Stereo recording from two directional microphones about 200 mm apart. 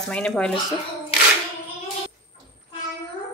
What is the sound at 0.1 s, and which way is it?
Speech, 5° left (ahead or behind).